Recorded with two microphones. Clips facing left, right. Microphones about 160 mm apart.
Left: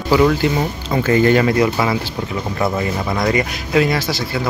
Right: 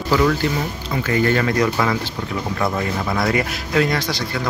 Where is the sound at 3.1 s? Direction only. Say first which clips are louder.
Left 2 dB; centre (ahead or behind).